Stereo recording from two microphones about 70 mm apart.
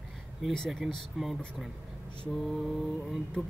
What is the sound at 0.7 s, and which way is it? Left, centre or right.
Speech, centre.